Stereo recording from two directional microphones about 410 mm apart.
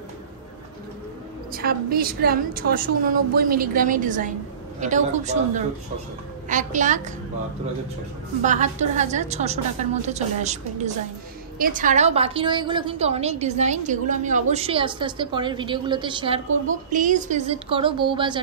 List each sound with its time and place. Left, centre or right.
1.5 s a woman's voice: right
8.4 s a woman's voice: centre